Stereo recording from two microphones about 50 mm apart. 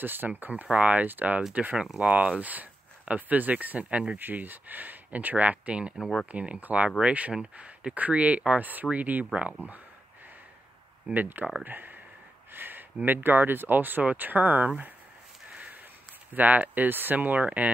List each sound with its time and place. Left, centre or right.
0.0 s speech: right
4.2 s speech: right
11.1 s speech: right
15.5 s a sound: right
16.3 s speech: right